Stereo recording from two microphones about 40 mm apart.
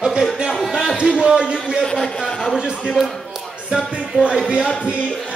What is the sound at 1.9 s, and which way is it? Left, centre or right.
Speech, centre.